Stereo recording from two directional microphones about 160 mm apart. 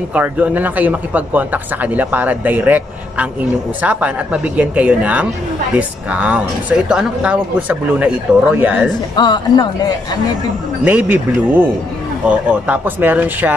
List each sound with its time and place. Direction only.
0.1 s speech: 10° right (ahead or behind)
9.1 s speech: 25° left (ahead or behind)
10.8 s speech: 10° right (ahead or behind)